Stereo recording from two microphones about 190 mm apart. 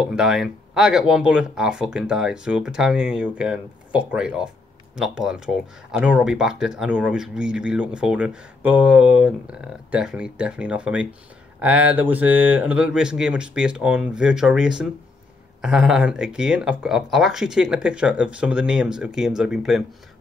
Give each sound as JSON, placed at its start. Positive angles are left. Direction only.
{"t": 0.1, "sound": "speech", "side_deg": 0}